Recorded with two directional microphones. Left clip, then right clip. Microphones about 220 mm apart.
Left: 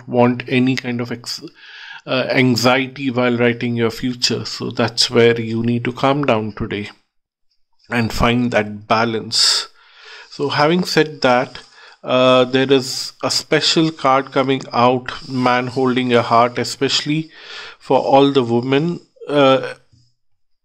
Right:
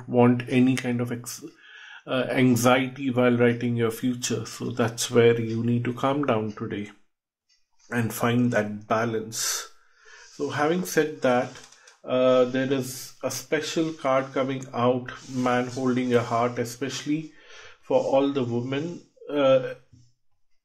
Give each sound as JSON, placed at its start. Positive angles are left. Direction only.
{"t": 0.1, "sound": "speech", "side_deg": 30}